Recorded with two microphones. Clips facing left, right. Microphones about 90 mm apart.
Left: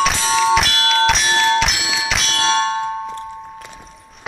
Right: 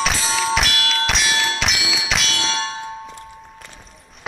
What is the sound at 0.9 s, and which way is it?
Bell, centre (ahead or behind).